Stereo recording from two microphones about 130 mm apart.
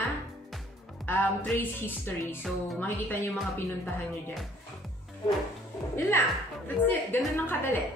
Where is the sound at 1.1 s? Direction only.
15° left (ahead or behind).